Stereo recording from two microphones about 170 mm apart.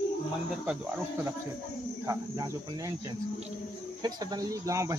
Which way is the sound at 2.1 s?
20° right (ahead or behind).